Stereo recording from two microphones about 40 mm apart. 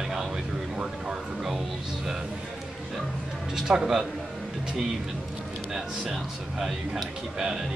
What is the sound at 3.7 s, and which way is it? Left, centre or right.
Speech, right.